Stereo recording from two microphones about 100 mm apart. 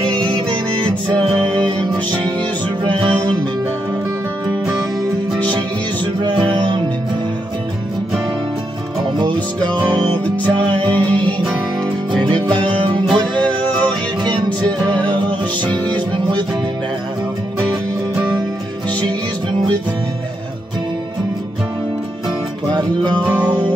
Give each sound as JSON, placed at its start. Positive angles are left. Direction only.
{"t": 0.7, "sound": "music", "side_deg": -55}
{"t": 2.8, "sound": "music", "side_deg": -55}
{"t": 6.2, "sound": "music", "side_deg": -50}
{"t": 10.9, "sound": "music", "side_deg": 15}
{"t": 13.1, "sound": "music", "side_deg": 10}
{"t": 14.2, "sound": "music", "side_deg": -45}
{"t": 22.7, "sound": "music", "side_deg": -45}
{"t": 23.2, "sound": "music", "side_deg": -20}